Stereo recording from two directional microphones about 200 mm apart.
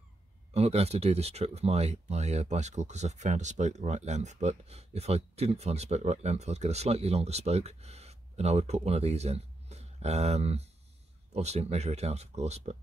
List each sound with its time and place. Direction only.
0.5 s speech: 30° right (ahead or behind)